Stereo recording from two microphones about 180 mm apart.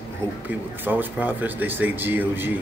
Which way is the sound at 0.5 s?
10° right (ahead or behind).